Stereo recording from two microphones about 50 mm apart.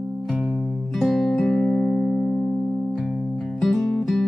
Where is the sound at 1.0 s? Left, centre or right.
Centre; by 2.2 s left.